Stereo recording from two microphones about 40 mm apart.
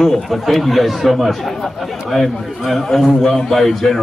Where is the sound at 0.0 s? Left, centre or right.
Centre.